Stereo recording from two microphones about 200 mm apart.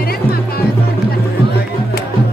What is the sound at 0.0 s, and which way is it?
Music, 50° left (ahead or behind).